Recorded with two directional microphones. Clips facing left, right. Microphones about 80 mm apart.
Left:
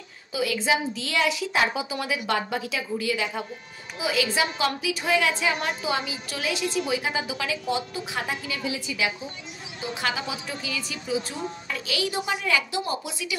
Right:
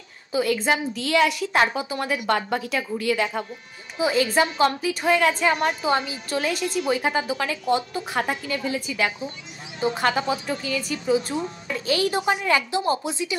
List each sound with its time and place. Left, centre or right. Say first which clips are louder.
0.3 s a woman's voice: right 3 dB; right
4.0 s a woman's voice: right 5 dB; right